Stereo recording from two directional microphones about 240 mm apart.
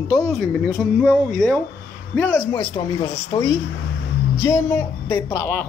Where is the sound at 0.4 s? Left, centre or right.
Centre.